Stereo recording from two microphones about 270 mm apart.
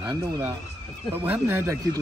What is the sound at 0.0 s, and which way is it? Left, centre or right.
Speech, centre.